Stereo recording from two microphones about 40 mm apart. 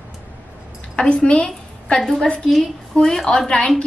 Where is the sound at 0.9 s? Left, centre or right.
Left; by 3.5 s centre.